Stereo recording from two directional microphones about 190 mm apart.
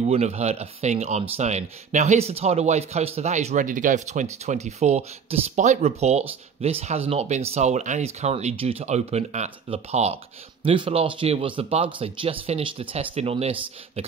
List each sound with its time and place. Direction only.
0.0 s speech: 35° right (ahead or behind)